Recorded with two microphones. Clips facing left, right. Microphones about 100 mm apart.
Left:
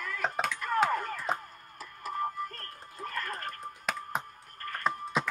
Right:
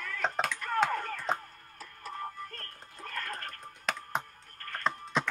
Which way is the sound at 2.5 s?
35° left (ahead or behind).